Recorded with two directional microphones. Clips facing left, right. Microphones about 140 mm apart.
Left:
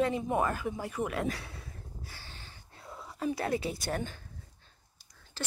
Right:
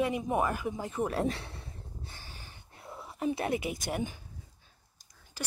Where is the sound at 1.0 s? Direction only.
30° right (ahead or behind).